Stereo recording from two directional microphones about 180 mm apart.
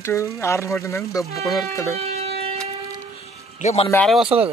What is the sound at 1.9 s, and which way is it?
Siren, 35° right (ahead or behind).